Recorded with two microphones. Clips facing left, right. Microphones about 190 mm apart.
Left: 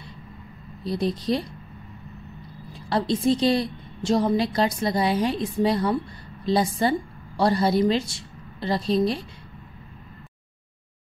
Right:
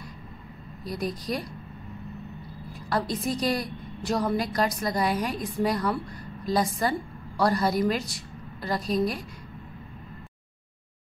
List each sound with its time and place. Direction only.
0.8 s a woman's voice: 25° left (ahead or behind)
2.7 s a woman's voice: 25° left (ahead or behind)